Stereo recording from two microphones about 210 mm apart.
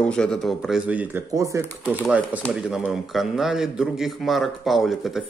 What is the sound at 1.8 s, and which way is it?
Speech, 10° left (ahead or behind).